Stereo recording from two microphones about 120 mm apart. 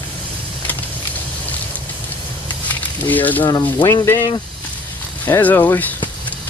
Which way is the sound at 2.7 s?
15° left (ahead or behind).